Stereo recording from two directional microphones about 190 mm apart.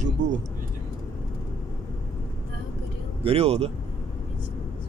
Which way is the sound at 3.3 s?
30° right (ahead or behind).